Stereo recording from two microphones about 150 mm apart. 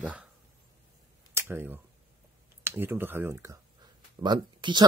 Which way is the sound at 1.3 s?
15° right (ahead or behind).